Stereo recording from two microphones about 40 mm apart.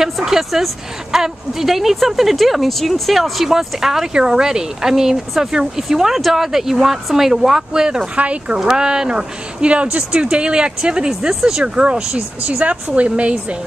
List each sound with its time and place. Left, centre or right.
0.0 s speech: centre
8.2 s speech: right
8.5 s speech: centre